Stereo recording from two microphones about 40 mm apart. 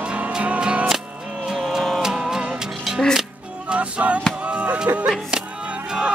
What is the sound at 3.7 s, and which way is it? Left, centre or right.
Music, right.